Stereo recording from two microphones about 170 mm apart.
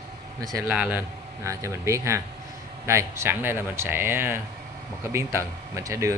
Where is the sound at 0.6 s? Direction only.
5° right (ahead or behind).